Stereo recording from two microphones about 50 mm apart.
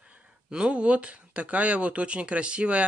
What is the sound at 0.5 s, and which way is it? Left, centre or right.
Speech, centre.